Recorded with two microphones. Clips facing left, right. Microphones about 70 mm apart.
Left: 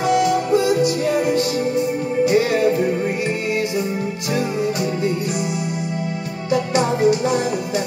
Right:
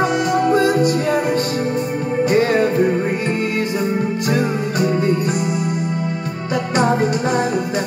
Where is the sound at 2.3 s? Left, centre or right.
Right.